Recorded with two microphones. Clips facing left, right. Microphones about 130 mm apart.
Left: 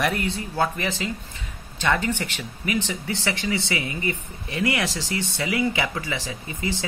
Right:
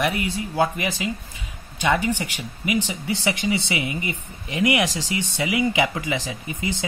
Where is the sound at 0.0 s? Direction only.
5° right (ahead or behind).